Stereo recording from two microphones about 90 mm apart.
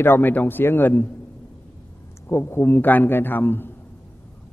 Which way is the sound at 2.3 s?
30° left (ahead or behind).